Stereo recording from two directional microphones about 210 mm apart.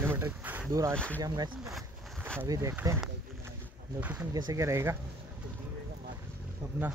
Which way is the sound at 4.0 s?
10° right (ahead or behind).